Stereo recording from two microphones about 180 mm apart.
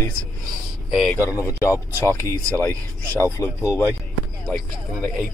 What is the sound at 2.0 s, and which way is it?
Speech, 15° left (ahead or behind).